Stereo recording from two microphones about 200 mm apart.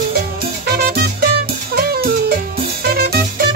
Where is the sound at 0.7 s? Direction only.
50° right (ahead or behind).